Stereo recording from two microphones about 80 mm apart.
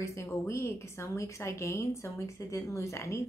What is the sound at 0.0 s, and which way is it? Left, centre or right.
Speech, left.